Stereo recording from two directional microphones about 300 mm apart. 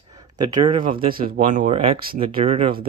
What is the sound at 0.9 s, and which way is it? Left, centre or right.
Speech, right.